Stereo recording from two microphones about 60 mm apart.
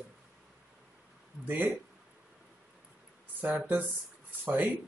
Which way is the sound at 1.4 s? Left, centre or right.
Right.